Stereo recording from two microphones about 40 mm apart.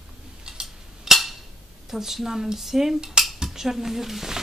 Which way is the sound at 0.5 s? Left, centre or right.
Centre.